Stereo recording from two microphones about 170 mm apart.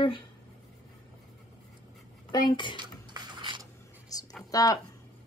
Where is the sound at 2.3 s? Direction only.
25° left (ahead or behind).